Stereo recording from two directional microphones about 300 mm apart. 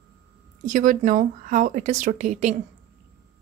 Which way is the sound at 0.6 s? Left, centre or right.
Right.